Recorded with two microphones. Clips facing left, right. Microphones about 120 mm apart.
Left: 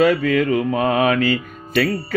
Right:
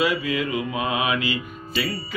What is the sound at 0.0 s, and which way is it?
Music, 50° left (ahead or behind).